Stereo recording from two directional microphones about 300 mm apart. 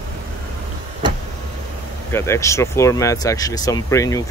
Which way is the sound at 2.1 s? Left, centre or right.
Centre.